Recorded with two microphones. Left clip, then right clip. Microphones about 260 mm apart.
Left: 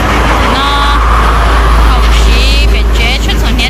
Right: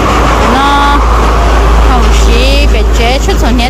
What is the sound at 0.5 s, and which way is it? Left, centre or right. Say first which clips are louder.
Vehicle: right 3 dB; right.